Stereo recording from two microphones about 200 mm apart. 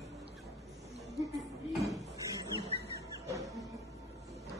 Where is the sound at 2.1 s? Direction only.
15° right (ahead or behind).